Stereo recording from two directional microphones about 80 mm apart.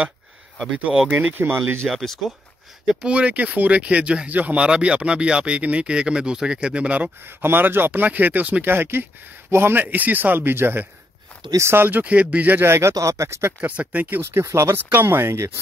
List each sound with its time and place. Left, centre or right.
1.3 s speech: right
2.0 s speech: centre
2.9 s speech: centre; by 12.9 s right
12.9 s speech: right
14.4 s speech: right